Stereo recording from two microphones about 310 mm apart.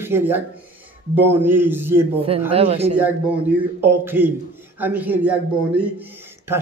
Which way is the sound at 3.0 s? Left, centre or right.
Centre.